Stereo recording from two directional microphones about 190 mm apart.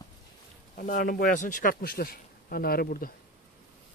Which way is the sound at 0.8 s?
45° left (ahead or behind).